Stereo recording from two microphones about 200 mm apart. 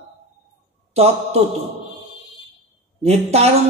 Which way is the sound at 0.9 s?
30° right (ahead or behind).